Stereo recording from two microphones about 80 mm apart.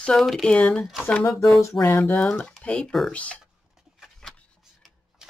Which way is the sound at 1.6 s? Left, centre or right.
Left.